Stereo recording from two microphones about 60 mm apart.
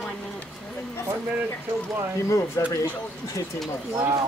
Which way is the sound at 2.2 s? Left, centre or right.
Left.